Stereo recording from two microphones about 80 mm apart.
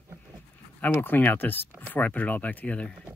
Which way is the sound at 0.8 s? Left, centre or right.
Left.